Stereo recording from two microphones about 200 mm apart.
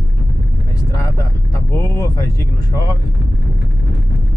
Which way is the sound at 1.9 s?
15° left (ahead or behind).